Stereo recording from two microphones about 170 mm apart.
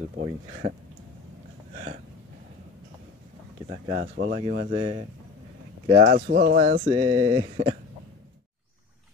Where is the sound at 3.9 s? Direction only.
60° right (ahead or behind).